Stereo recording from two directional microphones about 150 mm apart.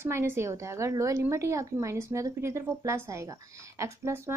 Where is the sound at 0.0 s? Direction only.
15° right (ahead or behind).